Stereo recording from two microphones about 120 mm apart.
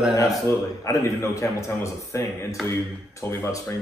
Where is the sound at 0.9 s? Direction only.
25° left (ahead or behind).